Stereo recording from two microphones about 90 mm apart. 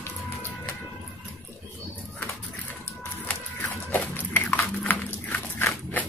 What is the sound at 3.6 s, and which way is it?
Dog, 20° left (ahead or behind).